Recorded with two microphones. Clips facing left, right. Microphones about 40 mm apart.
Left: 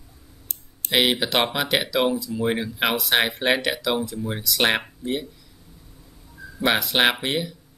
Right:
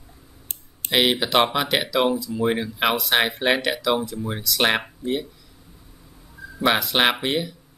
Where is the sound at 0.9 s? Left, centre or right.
Centre.